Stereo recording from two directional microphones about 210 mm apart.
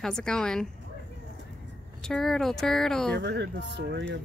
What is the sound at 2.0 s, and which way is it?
Speech, centre (ahead or behind).